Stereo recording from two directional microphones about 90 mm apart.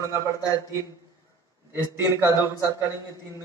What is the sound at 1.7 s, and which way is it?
A man's voice, 25° right (ahead or behind).